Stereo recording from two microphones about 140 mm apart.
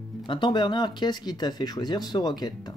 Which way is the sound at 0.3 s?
35° left (ahead or behind).